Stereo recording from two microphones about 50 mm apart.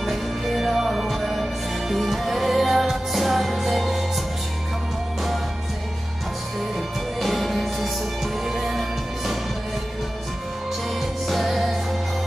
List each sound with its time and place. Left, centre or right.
0.0 s music: centre
7.2 s music: centre
11.0 s music: centre